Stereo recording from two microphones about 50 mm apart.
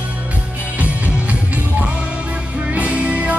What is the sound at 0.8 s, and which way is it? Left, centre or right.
Music, right.